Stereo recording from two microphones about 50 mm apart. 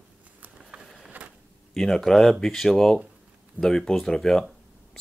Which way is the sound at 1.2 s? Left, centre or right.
Right.